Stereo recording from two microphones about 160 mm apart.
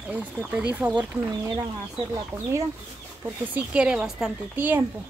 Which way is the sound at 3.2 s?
5° right (ahead or behind).